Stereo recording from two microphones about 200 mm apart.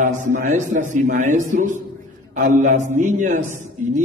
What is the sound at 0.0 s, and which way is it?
Speech, 40° right (ahead or behind).